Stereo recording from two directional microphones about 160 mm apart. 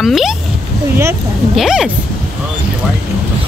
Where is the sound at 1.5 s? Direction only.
5° right (ahead or behind).